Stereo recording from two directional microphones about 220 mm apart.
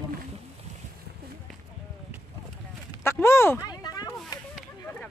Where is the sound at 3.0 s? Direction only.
10° left (ahead or behind).